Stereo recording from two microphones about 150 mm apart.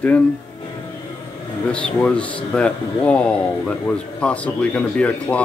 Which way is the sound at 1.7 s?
5° left (ahead or behind).